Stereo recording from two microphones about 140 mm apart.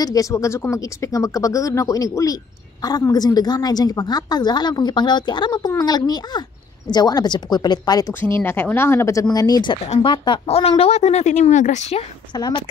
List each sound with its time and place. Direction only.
0.0 s a woman's voice: 25° left (ahead or behind)
8.1 s a woman's voice: 15° left (ahead or behind); by 12.0 s 60° left (ahead or behind)
12.4 s a woman's voice: 30° left (ahead or behind)